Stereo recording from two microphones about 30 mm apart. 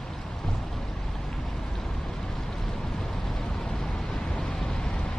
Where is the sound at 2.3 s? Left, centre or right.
Centre; by 5.1 s left.